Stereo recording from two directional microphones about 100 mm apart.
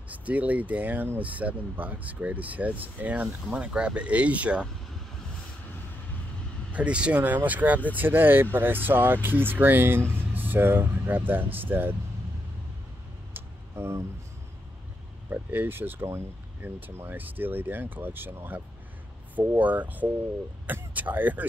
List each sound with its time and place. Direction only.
0.1 s speech: 15° right (ahead or behind)
6.7 s speech: 10° right (ahead or behind)
13.3 s vehicle: 25° right (ahead or behind)
15.2 s speech: 20° right (ahead or behind)